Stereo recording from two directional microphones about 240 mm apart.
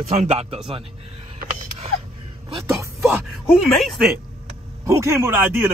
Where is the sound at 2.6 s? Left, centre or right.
Centre.